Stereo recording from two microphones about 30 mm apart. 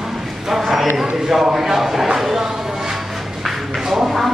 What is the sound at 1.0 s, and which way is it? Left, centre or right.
A man's voice, centre.